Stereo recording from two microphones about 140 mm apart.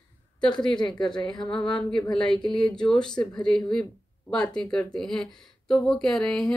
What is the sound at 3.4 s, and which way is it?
Speech, 5° left (ahead or behind).